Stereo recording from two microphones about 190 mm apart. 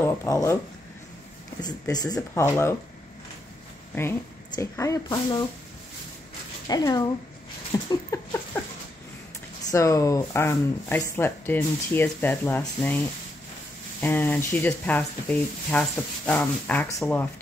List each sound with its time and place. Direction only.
0.0 s speech: 15° left (ahead or behind)
1.6 s speech: 20° left (ahead or behind)
4.6 s speech: 15° left (ahead or behind)
6.7 s speech: 20° left (ahead or behind)
9.7 s speech: 15° left (ahead or behind)
14.0 s speech: 10° left (ahead or behind)